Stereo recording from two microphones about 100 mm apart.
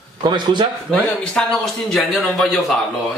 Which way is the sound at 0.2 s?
50° right (ahead or behind).